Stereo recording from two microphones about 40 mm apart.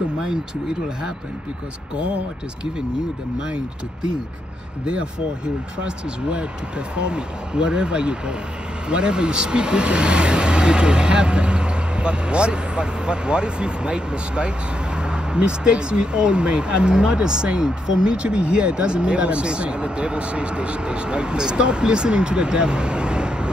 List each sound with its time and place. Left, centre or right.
7.0 s speech: right